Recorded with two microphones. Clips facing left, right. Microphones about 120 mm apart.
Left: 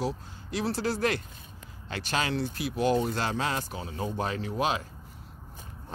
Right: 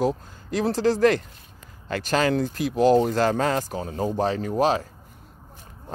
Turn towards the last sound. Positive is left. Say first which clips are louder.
# right 7 dB
turn(degrees=-40)  # may be behind; listen again after turning